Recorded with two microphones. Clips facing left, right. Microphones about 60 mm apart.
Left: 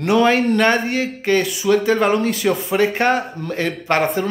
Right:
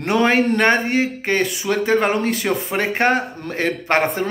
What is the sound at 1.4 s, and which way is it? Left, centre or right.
Speech, right.